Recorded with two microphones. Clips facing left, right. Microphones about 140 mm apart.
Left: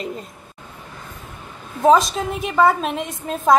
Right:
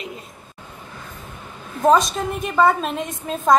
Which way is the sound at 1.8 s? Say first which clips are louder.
Left 1 dB; centre (ahead or behind).